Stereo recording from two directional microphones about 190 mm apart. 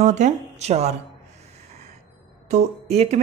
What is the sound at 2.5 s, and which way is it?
Speech, 35° right (ahead or behind).